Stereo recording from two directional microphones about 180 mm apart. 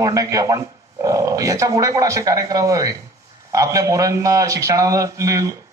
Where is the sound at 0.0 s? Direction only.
20° right (ahead or behind).